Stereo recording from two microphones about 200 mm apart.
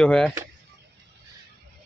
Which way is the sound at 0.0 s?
5° left (ahead or behind).